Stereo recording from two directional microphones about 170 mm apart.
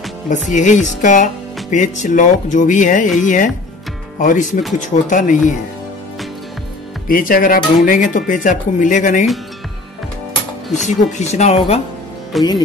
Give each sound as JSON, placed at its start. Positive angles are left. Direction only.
{"t": 0.3, "sound": "speech", "side_deg": 45}
{"t": 7.1, "sound": "speech", "side_deg": 55}
{"t": 10.9, "sound": "speech", "side_deg": 45}
{"t": 12.3, "sound": "speech", "side_deg": 0}